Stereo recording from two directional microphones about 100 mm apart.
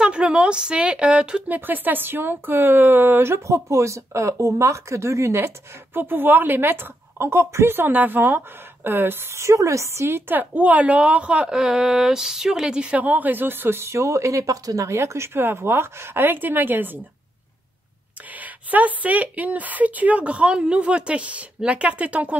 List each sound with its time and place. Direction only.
0.0 s a woman's voice: 10° right (ahead or behind)
18.4 s speech: 15° right (ahead or behind)